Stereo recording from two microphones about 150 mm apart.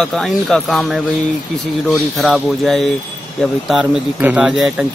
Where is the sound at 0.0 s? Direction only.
5° left (ahead or behind).